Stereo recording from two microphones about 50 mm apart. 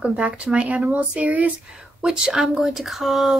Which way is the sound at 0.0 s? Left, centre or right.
Centre.